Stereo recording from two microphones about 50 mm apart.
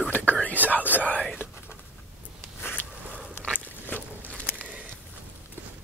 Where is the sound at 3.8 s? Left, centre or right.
Left.